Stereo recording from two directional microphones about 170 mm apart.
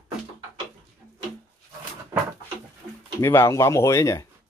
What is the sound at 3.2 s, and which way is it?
Speech, 15° left (ahead or behind).